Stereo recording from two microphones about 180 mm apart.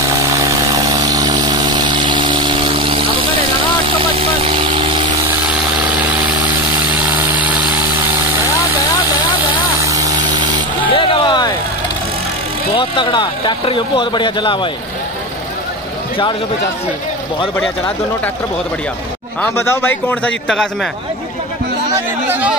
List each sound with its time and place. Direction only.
0.9 s vehicle: 20° right (ahead or behind)
7.0 s vehicle: 10° right (ahead or behind)
9.8 s vehicle: 20° right (ahead or behind)
10.9 s vehicle: 30° left (ahead or behind)
12.7 s speech: 25° left (ahead or behind)
19.4 s a man's voice: 15° left (ahead or behind)
21.9 s speech: 10° right (ahead or behind)